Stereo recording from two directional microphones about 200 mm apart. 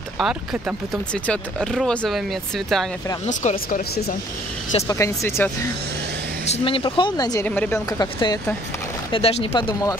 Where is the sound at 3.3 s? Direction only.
40° left (ahead or behind).